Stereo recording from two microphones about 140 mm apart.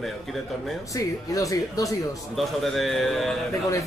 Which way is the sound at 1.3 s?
25° left (ahead or behind).